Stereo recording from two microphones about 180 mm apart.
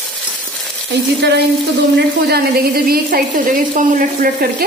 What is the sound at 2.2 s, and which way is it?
A woman's voice, 60° right (ahead or behind).